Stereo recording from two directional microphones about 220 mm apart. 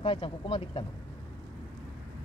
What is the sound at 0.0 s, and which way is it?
Speech, 25° left (ahead or behind).